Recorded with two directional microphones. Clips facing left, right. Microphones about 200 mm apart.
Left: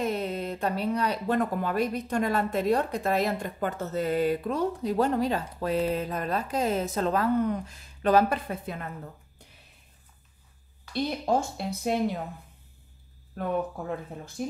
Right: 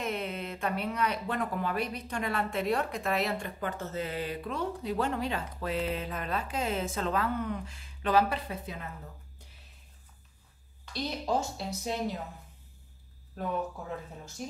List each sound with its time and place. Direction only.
0.0 s speech: 35° left (ahead or behind); by 8.8 s 55° left (ahead or behind)
10.9 s a woman's voice: 55° left (ahead or behind)